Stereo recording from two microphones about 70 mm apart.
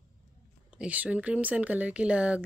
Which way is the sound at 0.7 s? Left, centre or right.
Centre.